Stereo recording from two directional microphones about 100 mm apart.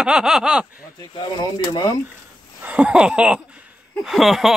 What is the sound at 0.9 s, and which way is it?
Speech, 50° left (ahead or behind).